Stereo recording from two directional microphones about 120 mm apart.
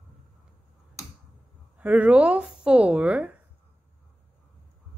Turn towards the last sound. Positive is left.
turn(degrees=-10)  # may be behind; listen again after turning